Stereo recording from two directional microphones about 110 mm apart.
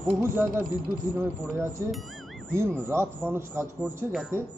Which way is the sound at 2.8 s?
20° right (ahead or behind).